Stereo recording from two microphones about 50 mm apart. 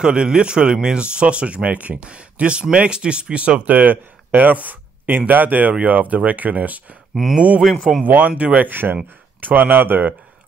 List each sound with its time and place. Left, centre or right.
0.0 s speech: centre
8.6 s speech: right